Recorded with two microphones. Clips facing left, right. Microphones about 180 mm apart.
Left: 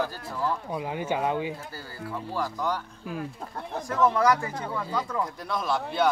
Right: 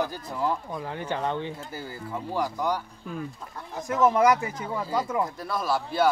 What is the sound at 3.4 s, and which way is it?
Speech, 55° left (ahead or behind).